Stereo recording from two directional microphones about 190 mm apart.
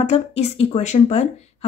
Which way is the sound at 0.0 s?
35° left (ahead or behind).